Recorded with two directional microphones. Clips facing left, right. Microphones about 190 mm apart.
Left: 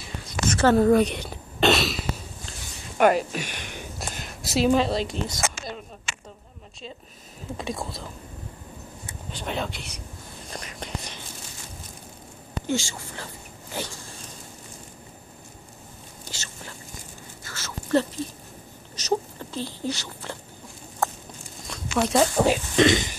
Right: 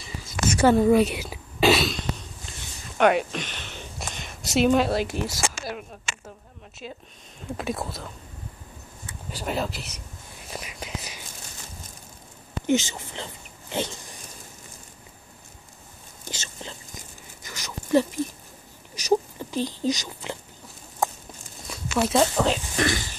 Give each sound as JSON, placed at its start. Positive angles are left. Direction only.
{"t": 0.0, "sound": "a sound", "side_deg": -5}
{"t": 7.5, "sound": "speech", "side_deg": -5}
{"t": 9.3, "sound": "speech", "side_deg": -5}
{"t": 10.5, "sound": "whispering", "side_deg": -5}
{"t": 12.6, "sound": "speech", "side_deg": -20}
{"t": 16.3, "sound": "whispering", "side_deg": -20}
{"t": 18.9, "sound": "a sound", "side_deg": -15}
{"t": 19.9, "sound": "speech", "side_deg": -15}
{"t": 21.0, "sound": "a sound", "side_deg": -15}
{"t": 21.6, "sound": "zipper", "side_deg": -5}
{"t": 22.4, "sound": "speech", "side_deg": 15}